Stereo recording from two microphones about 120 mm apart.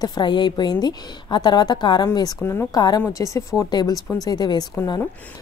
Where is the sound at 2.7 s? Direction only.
35° left (ahead or behind).